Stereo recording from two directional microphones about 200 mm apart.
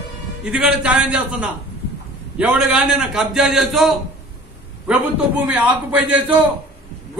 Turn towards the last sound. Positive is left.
turn(degrees=-5)  # may be behind; listen again after turning